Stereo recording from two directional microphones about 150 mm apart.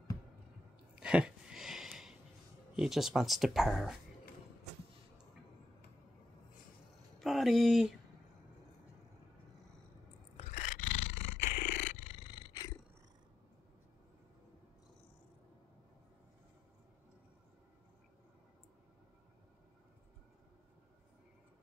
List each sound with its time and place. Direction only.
0.9 s a sound: 5° right (ahead or behind)
2.7 s speech: 5° right (ahead or behind)
7.2 s a sound: centre (ahead or behind)
10.3 s roar: 50° left (ahead or behind)
11.5 s roar: 65° left (ahead or behind)
12.1 s roar: 30° left (ahead or behind)